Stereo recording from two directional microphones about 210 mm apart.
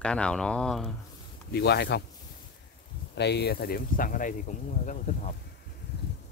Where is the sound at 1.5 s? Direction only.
50° left (ahead or behind).